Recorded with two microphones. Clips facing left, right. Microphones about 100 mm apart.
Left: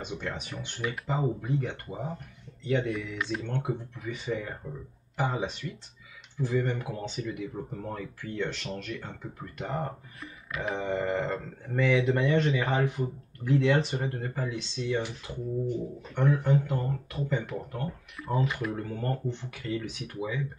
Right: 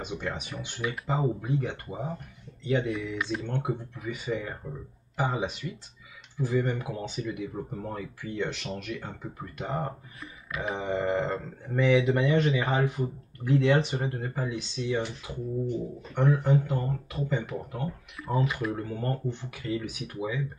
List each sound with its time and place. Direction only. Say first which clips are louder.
0.0 s speech: right 2 dB; 10° right (ahead or behind)